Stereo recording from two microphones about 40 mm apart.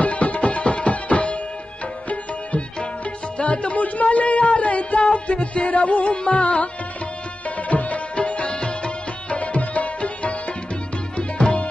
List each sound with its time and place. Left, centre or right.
0.0 s music: left
2.0 s sitar: left
3.3 s music: left
7.4 s tabla: left
8.2 s music: left